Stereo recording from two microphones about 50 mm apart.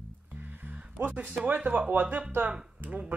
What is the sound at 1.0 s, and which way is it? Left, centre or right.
Speech, right.